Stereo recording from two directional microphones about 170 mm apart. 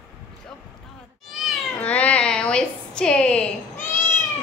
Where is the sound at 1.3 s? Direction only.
Centre (ahead or behind).